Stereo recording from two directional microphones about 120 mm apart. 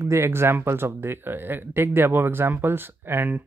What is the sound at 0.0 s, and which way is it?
Speech, 20° right (ahead or behind).